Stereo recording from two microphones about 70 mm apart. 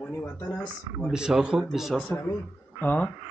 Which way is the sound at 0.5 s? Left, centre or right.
Centre.